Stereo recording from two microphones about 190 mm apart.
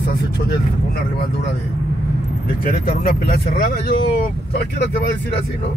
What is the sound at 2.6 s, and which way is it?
Speech, 50° left (ahead or behind).